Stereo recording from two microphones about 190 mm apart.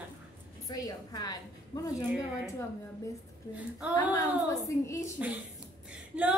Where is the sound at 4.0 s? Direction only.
15° left (ahead or behind).